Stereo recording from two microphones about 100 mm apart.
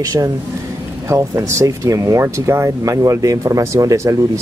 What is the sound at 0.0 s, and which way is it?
Speech, 35° right (ahead or behind).